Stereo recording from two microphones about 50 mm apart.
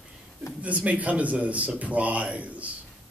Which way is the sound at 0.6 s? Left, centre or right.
Right.